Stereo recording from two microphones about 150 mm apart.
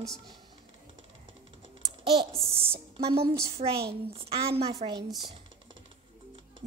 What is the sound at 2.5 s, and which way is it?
Speech, 40° right (ahead or behind).